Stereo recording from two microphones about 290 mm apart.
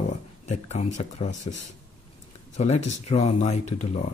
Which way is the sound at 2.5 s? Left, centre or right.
Left.